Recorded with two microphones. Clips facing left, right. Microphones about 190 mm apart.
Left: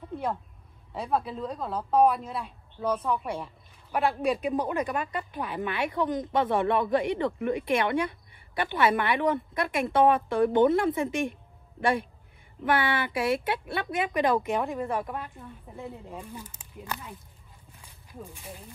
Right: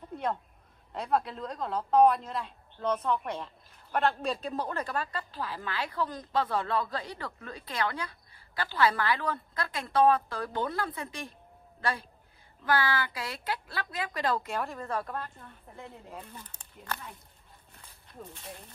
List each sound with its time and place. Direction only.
0.9 s speech: 5° left (ahead or behind); by 11.2 s 25° left (ahead or behind)
12.6 s speech: 25° left (ahead or behind)
17.7 s a sound: 10° left (ahead or behind)